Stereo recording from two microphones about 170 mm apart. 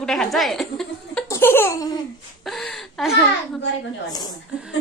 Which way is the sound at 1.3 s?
15° left (ahead or behind).